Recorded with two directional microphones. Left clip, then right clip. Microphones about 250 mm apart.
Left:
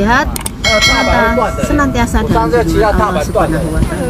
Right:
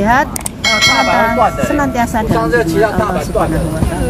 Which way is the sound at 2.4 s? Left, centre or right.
Right.